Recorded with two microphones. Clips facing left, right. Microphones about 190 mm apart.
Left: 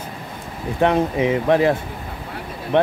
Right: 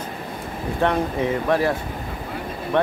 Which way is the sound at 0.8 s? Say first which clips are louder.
Left 4 dB; 20° left (ahead or behind).